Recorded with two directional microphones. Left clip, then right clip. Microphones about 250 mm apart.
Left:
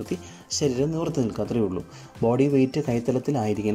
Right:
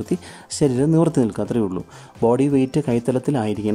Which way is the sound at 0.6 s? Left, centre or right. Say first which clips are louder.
Right 7 dB; centre.